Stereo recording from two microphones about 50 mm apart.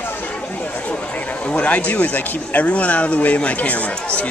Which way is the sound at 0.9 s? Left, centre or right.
Left.